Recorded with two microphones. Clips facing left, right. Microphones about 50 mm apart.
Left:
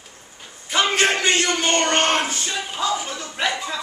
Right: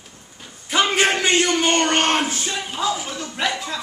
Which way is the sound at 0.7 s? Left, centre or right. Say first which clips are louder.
Right 1 dB; centre.